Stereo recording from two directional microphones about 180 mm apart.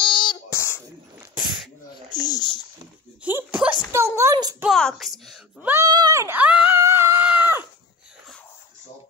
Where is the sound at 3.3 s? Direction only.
10° right (ahead or behind).